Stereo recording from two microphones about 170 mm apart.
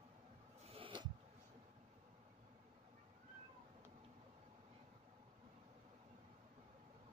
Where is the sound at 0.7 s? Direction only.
30° right (ahead or behind).